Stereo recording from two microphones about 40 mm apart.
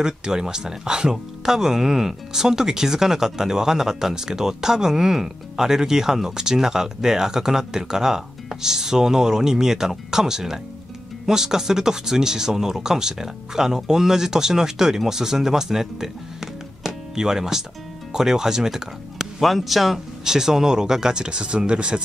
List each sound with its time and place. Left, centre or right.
0.0 s speech: centre
20.2 s speech: centre